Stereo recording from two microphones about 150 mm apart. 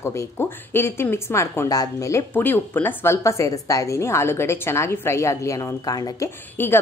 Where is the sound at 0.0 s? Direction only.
20° left (ahead or behind).